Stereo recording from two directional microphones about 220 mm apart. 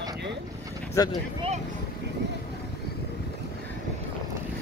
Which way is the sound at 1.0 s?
15° left (ahead or behind).